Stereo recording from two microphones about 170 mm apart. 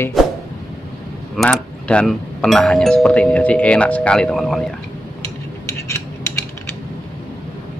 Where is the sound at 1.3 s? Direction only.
5° left (ahead or behind).